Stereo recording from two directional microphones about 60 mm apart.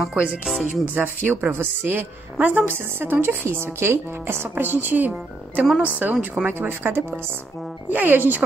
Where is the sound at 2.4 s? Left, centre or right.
Right.